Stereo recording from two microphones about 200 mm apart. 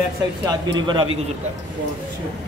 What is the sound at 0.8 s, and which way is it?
Speech, 25° right (ahead or behind).